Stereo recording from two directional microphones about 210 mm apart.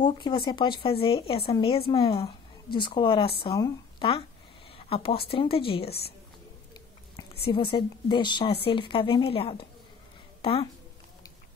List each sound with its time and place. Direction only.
0.0 s speech: 20° left (ahead or behind)
4.6 s a sound: 25° left (ahead or behind)
5.3 s speech: 25° left (ahead or behind)
7.4 s speech: 25° left (ahead or behind)